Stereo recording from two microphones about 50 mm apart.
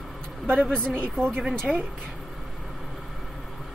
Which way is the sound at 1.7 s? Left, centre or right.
Centre.